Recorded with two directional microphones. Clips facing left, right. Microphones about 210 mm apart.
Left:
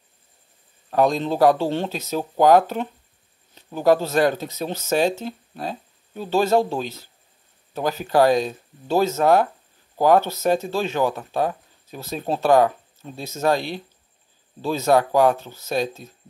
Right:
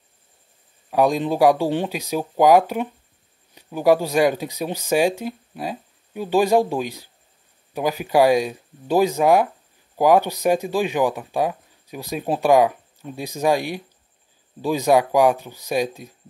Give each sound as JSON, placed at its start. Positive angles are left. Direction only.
{"t": 0.8, "sound": "speech", "side_deg": -10}